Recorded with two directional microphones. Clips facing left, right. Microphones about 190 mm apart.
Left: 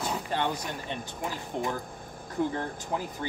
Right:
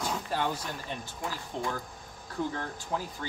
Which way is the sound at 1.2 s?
20° left (ahead or behind).